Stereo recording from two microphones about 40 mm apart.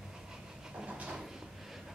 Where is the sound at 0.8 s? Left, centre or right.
Right.